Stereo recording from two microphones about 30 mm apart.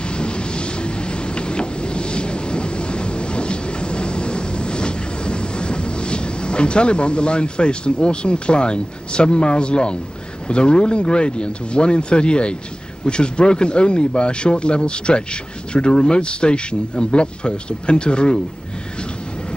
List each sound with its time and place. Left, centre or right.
0.1 s vehicle: left
10.5 s speech: left